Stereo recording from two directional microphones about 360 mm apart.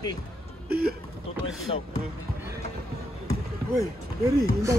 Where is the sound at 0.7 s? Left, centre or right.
Right.